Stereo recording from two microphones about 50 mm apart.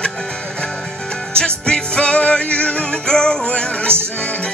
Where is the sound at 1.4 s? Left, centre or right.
Centre.